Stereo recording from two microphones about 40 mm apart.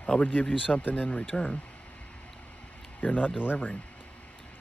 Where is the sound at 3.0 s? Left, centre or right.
Left.